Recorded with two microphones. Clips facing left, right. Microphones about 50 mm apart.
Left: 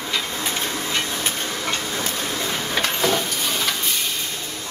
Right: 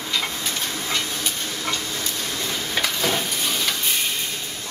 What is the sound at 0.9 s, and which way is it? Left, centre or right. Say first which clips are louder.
Hiss: even; left.